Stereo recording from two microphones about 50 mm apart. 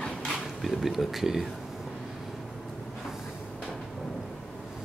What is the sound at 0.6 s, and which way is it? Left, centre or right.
Speech, centre.